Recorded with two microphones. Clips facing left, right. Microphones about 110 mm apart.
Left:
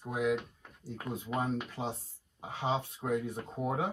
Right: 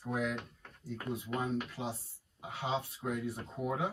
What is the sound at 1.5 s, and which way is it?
A man's voice, 25° left (ahead or behind).